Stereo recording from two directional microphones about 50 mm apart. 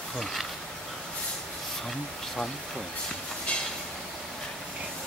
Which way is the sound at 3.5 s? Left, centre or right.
Left.